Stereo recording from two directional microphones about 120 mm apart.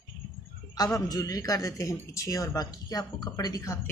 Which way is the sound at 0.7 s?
30° left (ahead or behind).